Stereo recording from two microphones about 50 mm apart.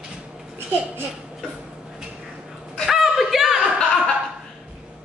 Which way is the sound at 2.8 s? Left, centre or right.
Centre.